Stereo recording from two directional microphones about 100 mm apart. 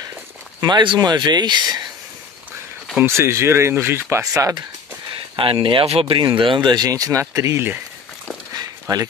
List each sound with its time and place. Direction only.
0.6 s speech: 45° right (ahead or behind)
3.0 s speech: 25° right (ahead or behind)
5.3 s speech: 60° right (ahead or behind); by 7.8 s 25° right (ahead or behind)
8.5 s a sound: 35° right (ahead or behind)